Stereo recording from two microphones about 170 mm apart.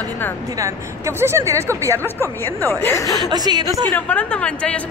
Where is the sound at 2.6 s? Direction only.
15° left (ahead or behind).